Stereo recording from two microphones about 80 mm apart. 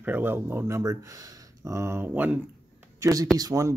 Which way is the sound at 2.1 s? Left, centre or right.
Right.